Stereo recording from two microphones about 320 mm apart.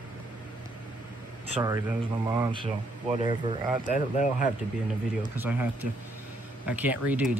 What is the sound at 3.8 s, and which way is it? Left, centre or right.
Speech, left.